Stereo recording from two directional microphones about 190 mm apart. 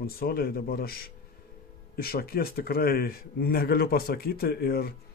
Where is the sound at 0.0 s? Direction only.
55° left (ahead or behind).